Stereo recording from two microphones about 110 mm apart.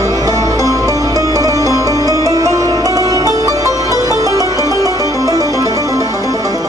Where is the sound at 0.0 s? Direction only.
35° right (ahead or behind).